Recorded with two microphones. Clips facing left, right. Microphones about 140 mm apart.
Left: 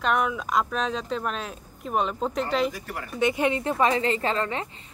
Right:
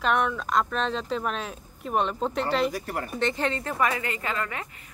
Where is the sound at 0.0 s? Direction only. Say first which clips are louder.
Even; centre (ahead or behind).